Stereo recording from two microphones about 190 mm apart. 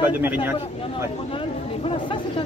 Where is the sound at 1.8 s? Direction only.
25° left (ahead or behind).